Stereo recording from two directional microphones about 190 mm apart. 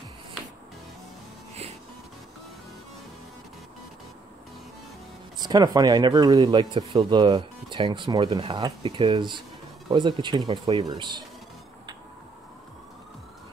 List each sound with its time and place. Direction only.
5.4 s speech: 20° right (ahead or behind)